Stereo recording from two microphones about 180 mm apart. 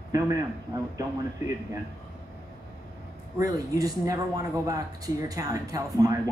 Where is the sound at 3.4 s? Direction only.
20° right (ahead or behind).